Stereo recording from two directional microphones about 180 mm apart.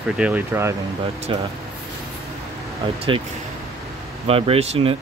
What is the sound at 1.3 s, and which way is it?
Speech, 30° right (ahead or behind).